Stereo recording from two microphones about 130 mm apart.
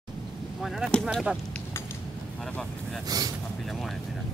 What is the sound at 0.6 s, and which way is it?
Speech, centre (ahead or behind).